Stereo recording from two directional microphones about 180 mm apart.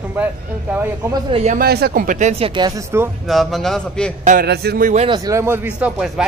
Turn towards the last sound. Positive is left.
turn(degrees=-5)  # may be behind; listen again after turning